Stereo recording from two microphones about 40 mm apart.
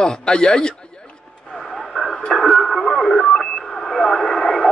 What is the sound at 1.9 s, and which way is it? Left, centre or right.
Radio, centre.